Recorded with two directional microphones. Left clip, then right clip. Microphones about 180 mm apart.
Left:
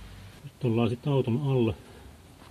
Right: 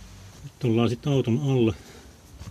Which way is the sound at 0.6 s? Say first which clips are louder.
Right 3 dB; 55° right (ahead or behind).